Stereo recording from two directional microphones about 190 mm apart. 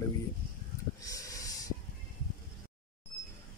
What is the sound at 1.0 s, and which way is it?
Snort, 20° left (ahead or behind).